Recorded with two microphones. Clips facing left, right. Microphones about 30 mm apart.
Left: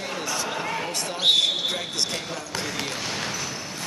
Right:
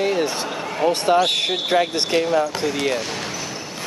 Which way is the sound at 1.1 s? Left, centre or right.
Right.